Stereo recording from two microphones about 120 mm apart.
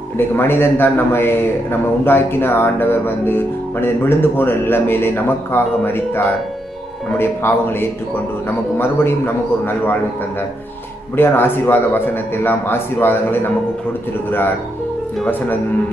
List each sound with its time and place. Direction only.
0.4 s a man's voice: 20° left (ahead or behind)
11.1 s a man's voice: 20° left (ahead or behind)